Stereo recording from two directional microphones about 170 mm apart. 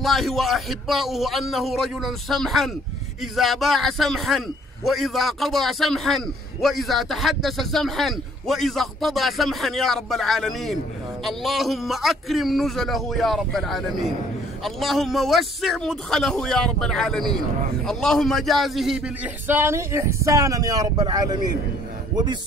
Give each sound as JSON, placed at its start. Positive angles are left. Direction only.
{"t": 0.0, "sound": "a man's voice", "side_deg": 0}